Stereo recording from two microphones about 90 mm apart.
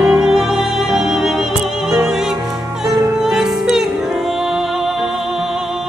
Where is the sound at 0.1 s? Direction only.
5° right (ahead or behind).